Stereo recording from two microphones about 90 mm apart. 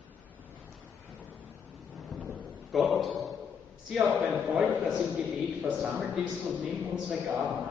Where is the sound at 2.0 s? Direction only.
Centre (ahead or behind).